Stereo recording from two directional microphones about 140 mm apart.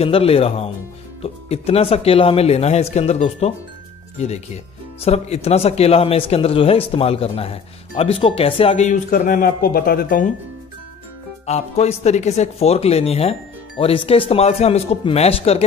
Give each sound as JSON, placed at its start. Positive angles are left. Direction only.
{"t": 0.0, "sound": "speech", "side_deg": 45}
{"t": 5.0, "sound": "speech", "side_deg": 45}
{"t": 11.4, "sound": "speech", "side_deg": 50}